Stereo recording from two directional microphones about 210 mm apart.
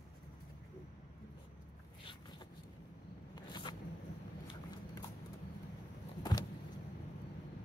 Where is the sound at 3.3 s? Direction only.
20° left (ahead or behind).